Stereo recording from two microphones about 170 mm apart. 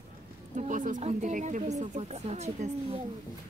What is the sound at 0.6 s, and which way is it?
Speech, 50° right (ahead or behind).